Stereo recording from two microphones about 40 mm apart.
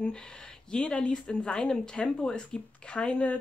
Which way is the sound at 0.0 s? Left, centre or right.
Left.